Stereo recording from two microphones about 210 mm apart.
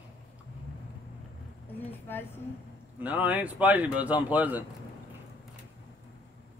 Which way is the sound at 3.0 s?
5° right (ahead or behind).